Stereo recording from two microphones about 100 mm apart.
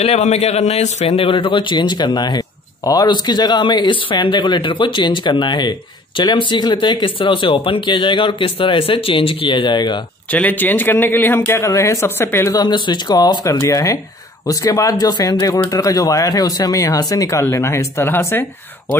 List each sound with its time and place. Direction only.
0.0 s speech: 90° left; by 9.9 s 50° left (ahead or behind)
10.3 s a man's voice: 15° left (ahead or behind)
12.5 s speech: 50° left (ahead or behind); by 18.9 s 20° left (ahead or behind)